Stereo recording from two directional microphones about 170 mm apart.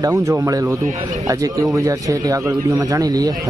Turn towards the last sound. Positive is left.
turn(degrees=-20)  # may be behind; listen again after turning